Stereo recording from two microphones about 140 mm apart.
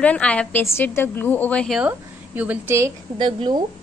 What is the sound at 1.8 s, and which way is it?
A woman's voice, 10° right (ahead or behind).